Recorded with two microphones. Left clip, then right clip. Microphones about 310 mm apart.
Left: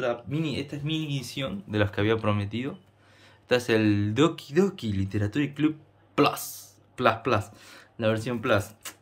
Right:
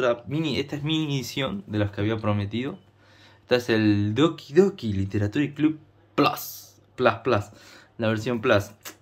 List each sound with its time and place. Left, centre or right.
0.0 s speech: centre
1.7 s speech: centre